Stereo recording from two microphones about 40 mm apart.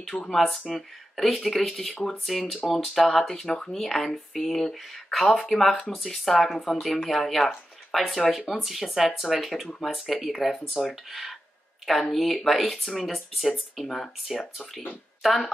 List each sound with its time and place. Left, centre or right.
0.0 s speech: centre
3.4 s speech: left
3.7 s speech: centre
8.2 s speech: centre
13.8 s speech: centre